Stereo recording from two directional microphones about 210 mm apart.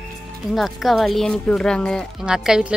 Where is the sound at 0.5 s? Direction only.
Centre (ahead or behind).